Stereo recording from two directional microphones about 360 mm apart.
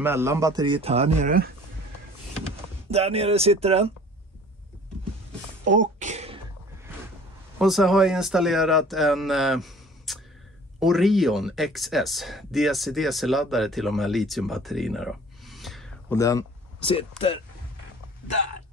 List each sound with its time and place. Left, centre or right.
0.0 s a man's voice: centre
2.9 s a man's voice: centre
5.7 s a sound: right
7.5 s speech: centre